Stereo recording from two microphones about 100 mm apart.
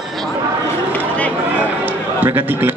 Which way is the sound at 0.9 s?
15° left (ahead or behind).